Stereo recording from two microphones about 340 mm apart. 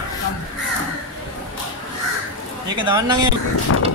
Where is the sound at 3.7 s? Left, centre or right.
Left.